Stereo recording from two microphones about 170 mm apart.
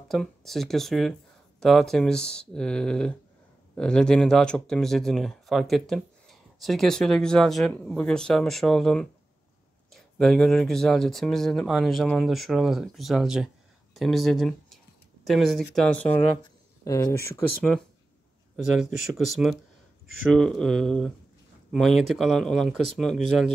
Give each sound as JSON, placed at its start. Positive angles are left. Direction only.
{"t": 0.1, "sound": "speech", "side_deg": 0}
{"t": 16.8, "sound": "speech", "side_deg": 20}
{"t": 19.1, "sound": "speech", "side_deg": 0}